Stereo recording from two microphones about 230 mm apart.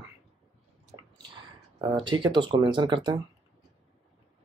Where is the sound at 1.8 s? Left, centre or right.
Right.